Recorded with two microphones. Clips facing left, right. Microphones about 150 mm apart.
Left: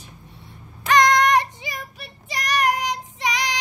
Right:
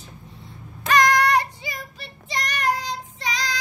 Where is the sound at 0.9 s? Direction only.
20° left (ahead or behind).